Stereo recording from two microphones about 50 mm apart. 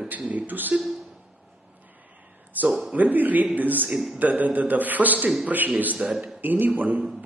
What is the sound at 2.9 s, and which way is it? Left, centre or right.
A man's voice, right.